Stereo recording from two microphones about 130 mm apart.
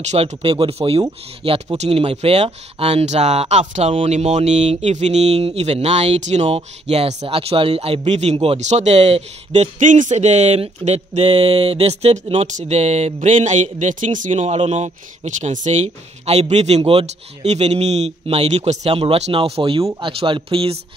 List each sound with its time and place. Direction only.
0.1 s speech: 60° right (ahead or behind)
0.4 s speech: 40° right (ahead or behind)